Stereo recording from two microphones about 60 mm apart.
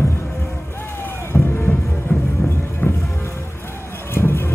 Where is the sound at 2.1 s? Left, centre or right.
Left.